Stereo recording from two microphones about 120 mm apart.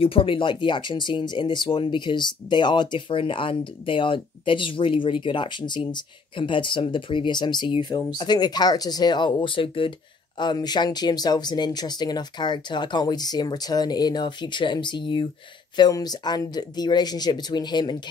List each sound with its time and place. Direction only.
0.0 s speech: 50° left (ahead or behind)